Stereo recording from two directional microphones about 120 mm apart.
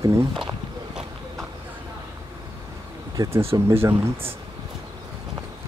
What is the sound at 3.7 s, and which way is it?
Speech, 20° right (ahead or behind).